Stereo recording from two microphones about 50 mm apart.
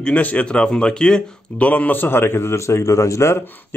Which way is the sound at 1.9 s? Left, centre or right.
Left.